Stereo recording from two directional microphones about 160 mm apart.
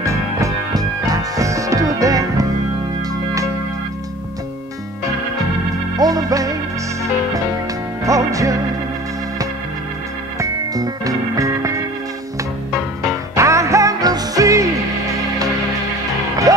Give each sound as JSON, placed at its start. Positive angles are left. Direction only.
{"t": 0.0, "sound": "music", "side_deg": -20}
{"t": 5.9, "sound": "music", "side_deg": -25}
{"t": 10.4, "sound": "music", "side_deg": -25}
{"t": 13.4, "sound": "music", "side_deg": -20}
{"t": 16.5, "sound": "music", "side_deg": -20}